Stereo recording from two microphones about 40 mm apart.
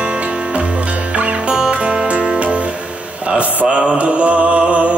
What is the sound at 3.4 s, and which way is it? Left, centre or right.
Mantra, right.